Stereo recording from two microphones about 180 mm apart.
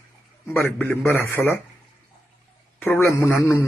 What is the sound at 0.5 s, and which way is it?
Speech, 15° left (ahead or behind).